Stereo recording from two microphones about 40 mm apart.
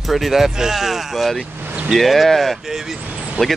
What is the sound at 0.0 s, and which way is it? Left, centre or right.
Speech, centre.